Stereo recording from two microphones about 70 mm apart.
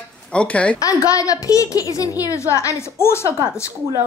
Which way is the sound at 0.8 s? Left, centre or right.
Left.